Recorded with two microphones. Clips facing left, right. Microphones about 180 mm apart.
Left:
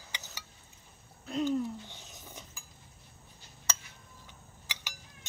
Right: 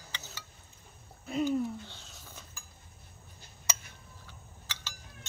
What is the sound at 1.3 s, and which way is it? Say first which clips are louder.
Speech: right 1 dB; 5° right (ahead or behind).